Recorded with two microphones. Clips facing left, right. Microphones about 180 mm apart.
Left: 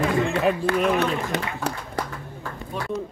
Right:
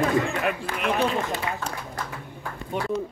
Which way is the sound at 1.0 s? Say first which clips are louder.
Left 1 dB; 65° left (ahead or behind).